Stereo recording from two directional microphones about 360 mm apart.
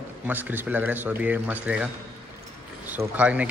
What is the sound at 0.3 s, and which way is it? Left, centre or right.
Speech, centre.